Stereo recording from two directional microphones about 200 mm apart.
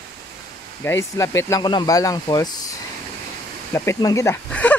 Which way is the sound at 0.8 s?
15° left (ahead or behind).